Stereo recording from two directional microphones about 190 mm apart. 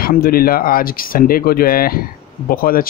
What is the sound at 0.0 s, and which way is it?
A man's voice, 50° left (ahead or behind).